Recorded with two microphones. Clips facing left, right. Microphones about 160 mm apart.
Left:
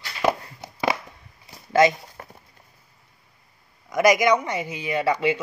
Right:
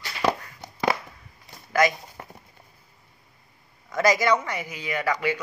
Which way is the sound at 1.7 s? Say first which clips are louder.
Left 4 dB; 25° left (ahead or behind).